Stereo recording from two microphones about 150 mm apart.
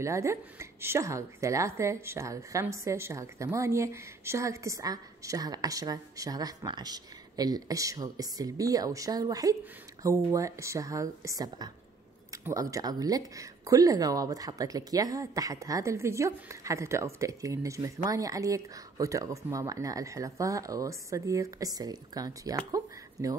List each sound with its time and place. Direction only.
0.0 s speech: 20° right (ahead or behind)